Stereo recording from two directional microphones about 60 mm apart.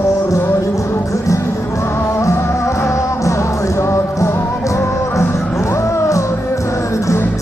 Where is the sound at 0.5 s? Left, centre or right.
Left.